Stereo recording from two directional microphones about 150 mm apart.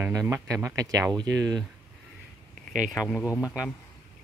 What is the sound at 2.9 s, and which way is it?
Speech, centre (ahead or behind).